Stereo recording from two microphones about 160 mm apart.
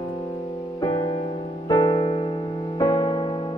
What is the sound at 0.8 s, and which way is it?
Music, 25° left (ahead or behind).